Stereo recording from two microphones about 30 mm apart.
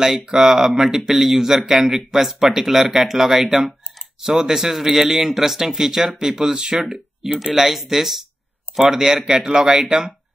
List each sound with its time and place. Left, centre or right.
0.0 s speech: centre
7.4 s speech: centre